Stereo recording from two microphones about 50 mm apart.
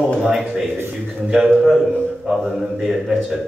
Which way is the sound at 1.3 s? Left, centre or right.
Centre.